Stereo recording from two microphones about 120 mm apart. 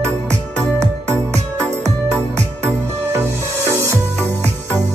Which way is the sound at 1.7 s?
70° right (ahead or behind).